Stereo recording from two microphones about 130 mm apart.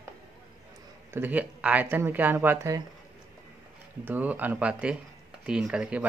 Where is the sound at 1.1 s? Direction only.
10° right (ahead or behind).